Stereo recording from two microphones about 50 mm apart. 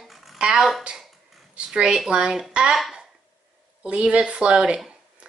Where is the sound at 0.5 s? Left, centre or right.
Centre.